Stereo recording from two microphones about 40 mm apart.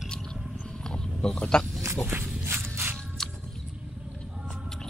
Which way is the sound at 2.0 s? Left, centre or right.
Right.